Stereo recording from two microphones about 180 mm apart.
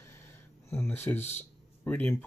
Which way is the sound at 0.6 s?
15° left (ahead or behind).